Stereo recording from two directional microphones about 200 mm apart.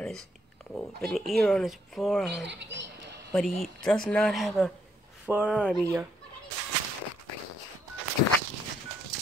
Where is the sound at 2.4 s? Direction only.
60° right (ahead or behind).